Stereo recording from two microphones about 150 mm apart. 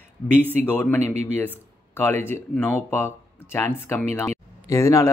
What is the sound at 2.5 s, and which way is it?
Speech, 10° left (ahead or behind).